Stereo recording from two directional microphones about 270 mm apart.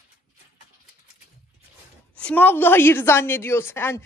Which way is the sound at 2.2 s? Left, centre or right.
Centre.